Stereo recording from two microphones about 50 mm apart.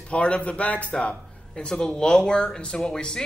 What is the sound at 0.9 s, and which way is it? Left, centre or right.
Speech, centre.